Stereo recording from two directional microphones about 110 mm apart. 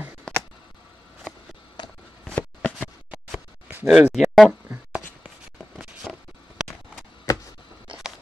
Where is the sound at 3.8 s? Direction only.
5° right (ahead or behind).